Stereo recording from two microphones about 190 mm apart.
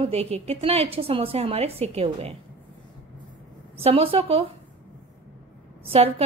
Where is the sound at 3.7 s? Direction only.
30° right (ahead or behind).